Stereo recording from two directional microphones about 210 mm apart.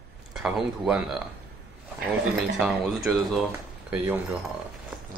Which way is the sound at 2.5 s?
Centre (ahead or behind).